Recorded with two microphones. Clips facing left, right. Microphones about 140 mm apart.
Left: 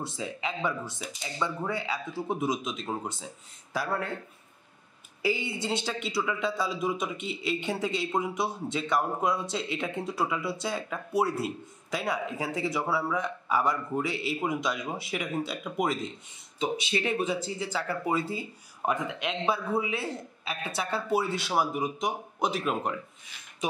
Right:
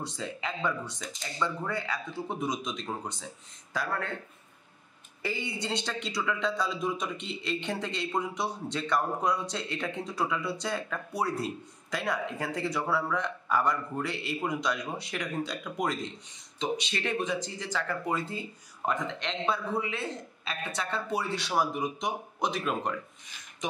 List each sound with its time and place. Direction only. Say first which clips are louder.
0.1 s speech: left 2 dB; 10° left (ahead or behind)
5.2 s speech: left 4 dB; 5° left (ahead or behind)